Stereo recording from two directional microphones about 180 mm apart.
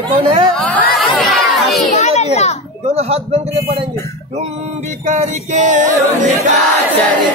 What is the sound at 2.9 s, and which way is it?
Male singing, 35° right (ahead or behind).